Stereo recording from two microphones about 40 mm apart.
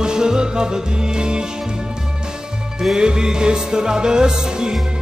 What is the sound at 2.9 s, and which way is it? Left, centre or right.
Music, centre.